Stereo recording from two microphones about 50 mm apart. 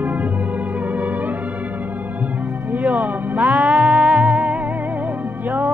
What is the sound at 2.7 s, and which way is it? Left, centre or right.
Music, right.